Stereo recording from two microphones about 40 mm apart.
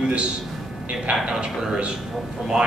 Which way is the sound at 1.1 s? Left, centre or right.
Right.